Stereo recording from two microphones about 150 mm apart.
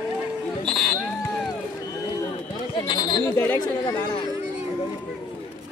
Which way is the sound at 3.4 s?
15° left (ahead or behind).